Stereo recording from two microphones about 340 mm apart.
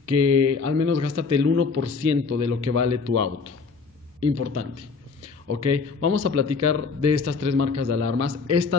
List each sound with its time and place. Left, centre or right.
0.0 s speech: right
5.5 s speech: right